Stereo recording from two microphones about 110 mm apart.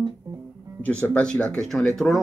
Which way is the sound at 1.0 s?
10° left (ahead or behind).